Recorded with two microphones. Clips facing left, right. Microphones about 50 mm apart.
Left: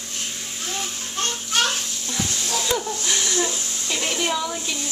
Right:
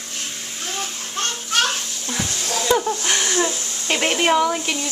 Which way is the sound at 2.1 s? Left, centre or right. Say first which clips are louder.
Right 1 dB; right.